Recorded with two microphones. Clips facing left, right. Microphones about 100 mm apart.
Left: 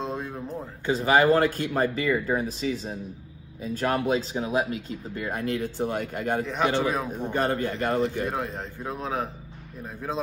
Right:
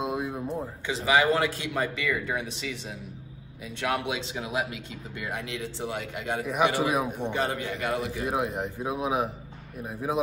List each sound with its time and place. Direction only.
0.0 s a sound: 10° right (ahead or behind)
0.8 s speech: 40° left (ahead or behind)
6.4 s speech: 10° right (ahead or behind)
7.3 s a man's voice: 45° left (ahead or behind)
8.3 s speech: 15° right (ahead or behind)